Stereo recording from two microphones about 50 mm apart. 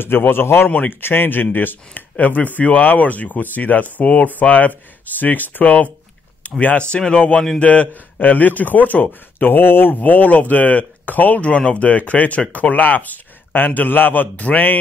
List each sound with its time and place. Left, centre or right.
0.0 s a man's voice: left
6.4 s a sound: left
6.9 s speech: centre
8.2 s speech: left